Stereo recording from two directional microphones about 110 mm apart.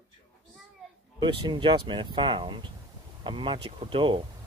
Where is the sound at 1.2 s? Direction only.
45° right (ahead or behind).